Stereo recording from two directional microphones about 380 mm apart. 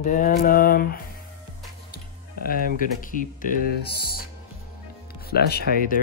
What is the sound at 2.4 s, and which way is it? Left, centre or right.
Speech, left.